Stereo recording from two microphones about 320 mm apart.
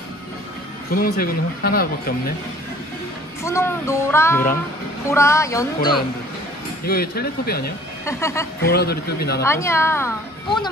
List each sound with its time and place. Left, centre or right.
0.8 s speech: left
3.4 s speech: centre
6.9 s speech: left
8.0 s speech: centre
8.6 s speech: left
9.4 s speech: centre